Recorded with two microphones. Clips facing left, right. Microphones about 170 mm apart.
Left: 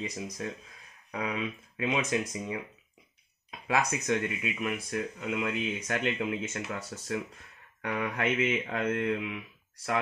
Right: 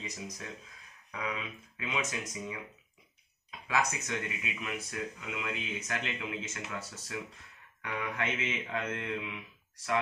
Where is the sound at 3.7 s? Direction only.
35° left (ahead or behind).